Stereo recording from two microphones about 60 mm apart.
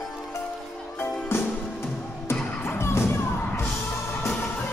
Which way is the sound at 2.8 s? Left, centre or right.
Left.